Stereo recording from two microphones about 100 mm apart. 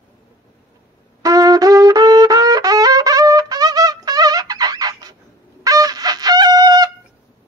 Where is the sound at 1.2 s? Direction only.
40° right (ahead or behind).